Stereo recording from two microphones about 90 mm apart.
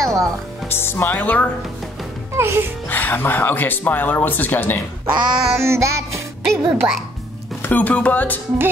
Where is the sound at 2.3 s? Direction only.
30° right (ahead or behind).